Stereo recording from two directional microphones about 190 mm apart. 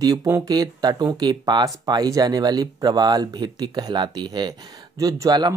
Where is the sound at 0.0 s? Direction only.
20° right (ahead or behind).